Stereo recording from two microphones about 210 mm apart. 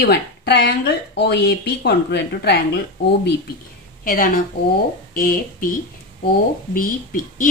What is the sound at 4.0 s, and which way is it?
A woman's voice, 40° left (ahead or behind).